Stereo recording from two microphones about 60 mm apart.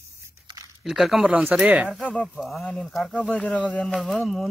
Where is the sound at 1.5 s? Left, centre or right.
Right.